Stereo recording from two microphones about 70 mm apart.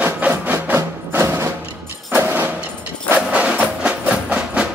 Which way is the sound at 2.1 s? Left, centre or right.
Right.